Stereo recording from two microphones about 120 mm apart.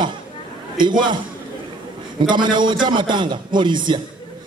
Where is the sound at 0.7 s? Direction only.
40° right (ahead or behind).